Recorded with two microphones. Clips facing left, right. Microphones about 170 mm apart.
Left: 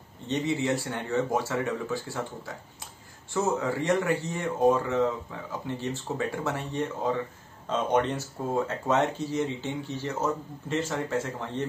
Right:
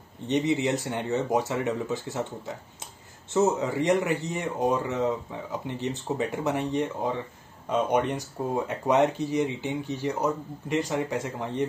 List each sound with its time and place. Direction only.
0.3 s speech: 20° right (ahead or behind)